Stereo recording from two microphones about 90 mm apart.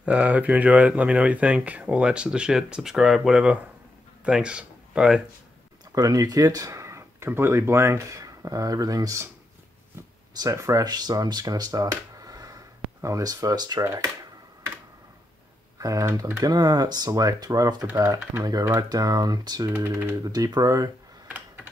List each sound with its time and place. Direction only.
0.0 s speech: 15° right (ahead or behind)
5.9 s speech: 40° right (ahead or behind)
10.5 s speech: 35° right (ahead or behind)
15.8 s speech: 40° right (ahead or behind)
19.7 s speech: 25° right (ahead or behind)
20.2 s speech: 45° right (ahead or behind)